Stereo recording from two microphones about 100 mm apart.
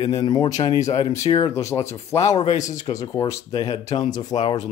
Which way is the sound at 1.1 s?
30° left (ahead or behind).